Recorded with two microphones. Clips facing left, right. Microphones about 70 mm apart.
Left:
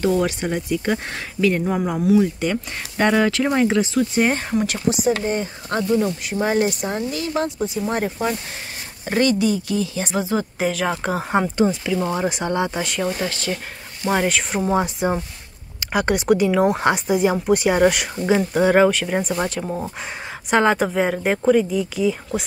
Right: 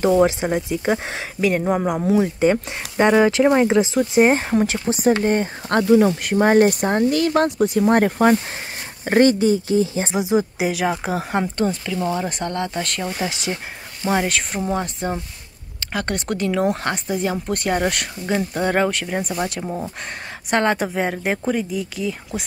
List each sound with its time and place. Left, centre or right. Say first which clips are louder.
0.1 s speech: right 4 dB; right
3.0 s speech: right 3 dB; centre; by 8.4 s right
9.0 s speech: right 4 dB; right
10.1 s speech: right 3 dB; centre
12.8 s speech: left 3 dB; centre
13.2 s speech: even; centre
14.0 s speech: left 1 dB; centre
14.7 s speech: left 5 dB; centre